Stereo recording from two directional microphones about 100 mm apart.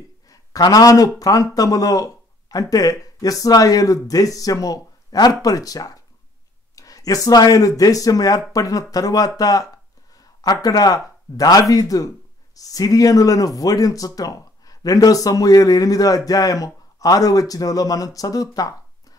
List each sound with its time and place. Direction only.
0.3 s speech: 40° left (ahead or behind)
10.1 s a sound: 40° left (ahead or behind)
11.3 s speech: 35° left (ahead or behind)